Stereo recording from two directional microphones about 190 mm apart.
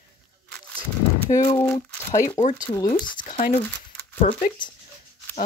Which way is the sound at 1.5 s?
15° left (ahead or behind).